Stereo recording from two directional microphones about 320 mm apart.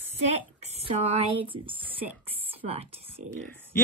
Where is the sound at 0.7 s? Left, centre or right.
Centre.